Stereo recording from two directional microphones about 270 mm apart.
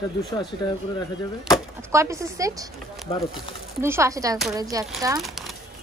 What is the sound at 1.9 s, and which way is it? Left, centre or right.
Speech, centre.